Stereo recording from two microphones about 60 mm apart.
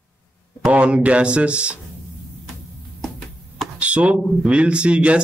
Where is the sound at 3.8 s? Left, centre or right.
Right.